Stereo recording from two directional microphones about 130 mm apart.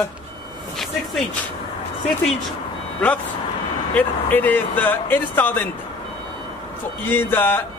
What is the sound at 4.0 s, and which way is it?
A man's voice, 15° left (ahead or behind).